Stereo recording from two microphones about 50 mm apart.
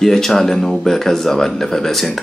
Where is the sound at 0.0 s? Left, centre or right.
Centre.